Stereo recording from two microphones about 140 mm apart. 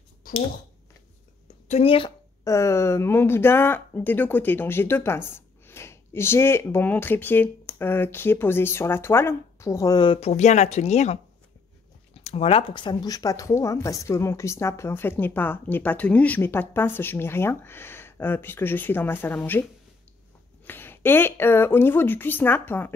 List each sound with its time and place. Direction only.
1.7 s speech: 45° left (ahead or behind)
2.4 s speech: 20° left (ahead or behind)
20.6 s speech: 15° left (ahead or behind)